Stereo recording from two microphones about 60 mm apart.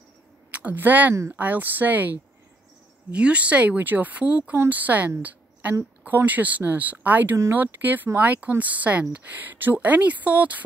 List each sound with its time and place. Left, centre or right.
0.5 s a woman's voice: right
3.1 s a woman's voice: centre